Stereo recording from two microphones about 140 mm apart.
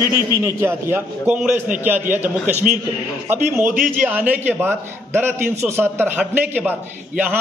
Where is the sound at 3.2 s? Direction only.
15° right (ahead or behind).